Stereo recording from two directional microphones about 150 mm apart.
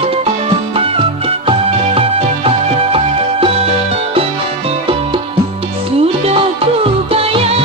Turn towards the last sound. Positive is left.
turn(degrees=-40)  # may be behind; listen again after turning